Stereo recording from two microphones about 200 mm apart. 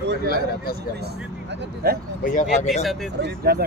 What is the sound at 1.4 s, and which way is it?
Speech, 55° right (ahead or behind).